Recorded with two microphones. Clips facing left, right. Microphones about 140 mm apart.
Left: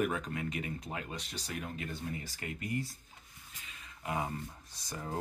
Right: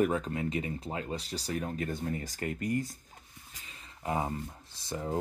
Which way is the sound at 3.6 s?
35° right (ahead or behind).